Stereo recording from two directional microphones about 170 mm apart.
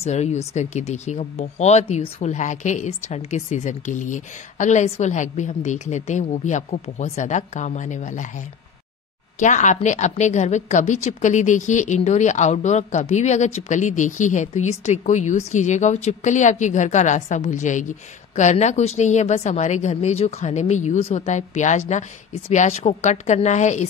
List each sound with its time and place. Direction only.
0.0 s a woman's voice: 40° left (ahead or behind)
9.4 s a woman's voice: 45° left (ahead or behind)